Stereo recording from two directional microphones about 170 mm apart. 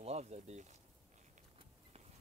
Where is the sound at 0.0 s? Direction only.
40° right (ahead or behind).